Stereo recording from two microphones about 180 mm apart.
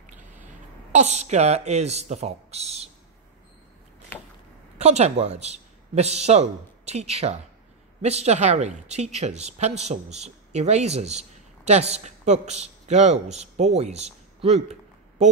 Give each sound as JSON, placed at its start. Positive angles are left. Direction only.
{"t": 0.5, "sound": "speech", "side_deg": -40}
{"t": 4.7, "sound": "speech", "side_deg": -35}